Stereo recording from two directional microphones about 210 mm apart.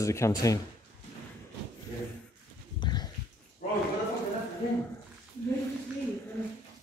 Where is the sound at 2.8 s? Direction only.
20° left (ahead or behind).